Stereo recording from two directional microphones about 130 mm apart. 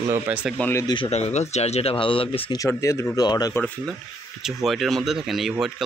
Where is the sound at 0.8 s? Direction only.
40° left (ahead or behind).